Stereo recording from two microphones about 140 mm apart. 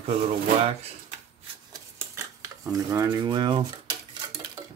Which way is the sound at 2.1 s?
25° right (ahead or behind).